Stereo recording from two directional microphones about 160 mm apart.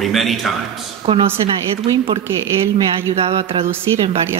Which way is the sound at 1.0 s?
35° right (ahead or behind).